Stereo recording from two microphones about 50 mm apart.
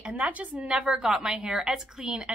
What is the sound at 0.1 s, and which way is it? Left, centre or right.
A woman's voice, right.